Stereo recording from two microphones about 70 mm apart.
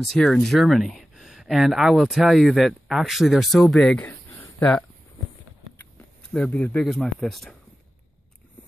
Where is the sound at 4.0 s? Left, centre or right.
Left.